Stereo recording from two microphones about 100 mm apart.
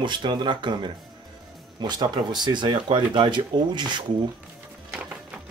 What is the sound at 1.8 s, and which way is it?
Speech, 45° right (ahead or behind).